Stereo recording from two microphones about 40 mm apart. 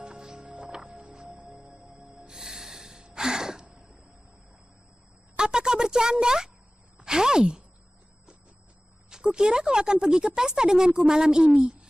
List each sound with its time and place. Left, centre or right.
0.0 s music: centre
0.5 s music: right
2.2 s snort: centre
3.2 s gasp: centre
5.3 s a sound: centre
7.1 s speech: centre
9.1 s speech: centre